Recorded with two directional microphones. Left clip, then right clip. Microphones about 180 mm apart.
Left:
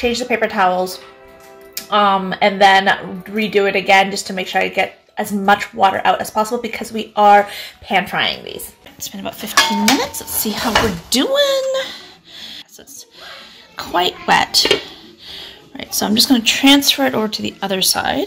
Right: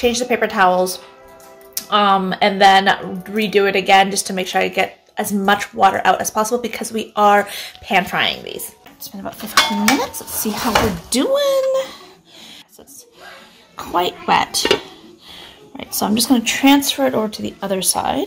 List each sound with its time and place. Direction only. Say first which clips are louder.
0.0 s speech: even; 5° right (ahead or behind)
9.0 s dishes: left 3 dB; centre (ahead or behind)
10.5 s speech: left 1 dB; 10° right (ahead or behind)
11.1 s a sound: left 1 dB; centre (ahead or behind)
13.2 s speech: left 3 dB; centre (ahead or behind)